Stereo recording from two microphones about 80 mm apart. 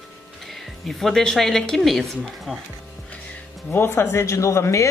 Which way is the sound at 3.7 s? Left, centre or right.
Left.